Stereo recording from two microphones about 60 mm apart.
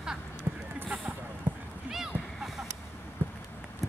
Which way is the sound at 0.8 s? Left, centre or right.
Centre.